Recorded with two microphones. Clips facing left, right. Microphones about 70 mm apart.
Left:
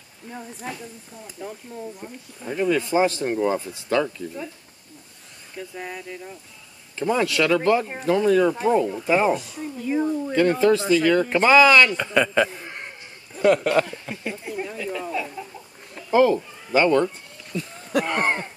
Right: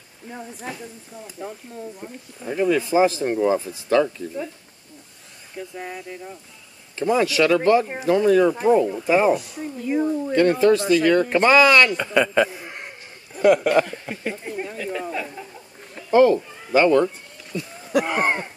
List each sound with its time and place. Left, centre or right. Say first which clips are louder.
0.3 s speech: right 1 dB; centre
5.8 s speech: even; centre
14.1 s speech: right 2 dB; right
15.9 s speech: right 2 dB; centre